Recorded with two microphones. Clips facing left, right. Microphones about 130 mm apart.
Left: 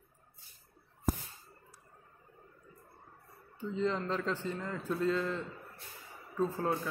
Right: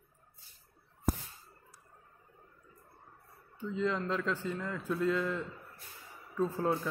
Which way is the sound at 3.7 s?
5° right (ahead or behind).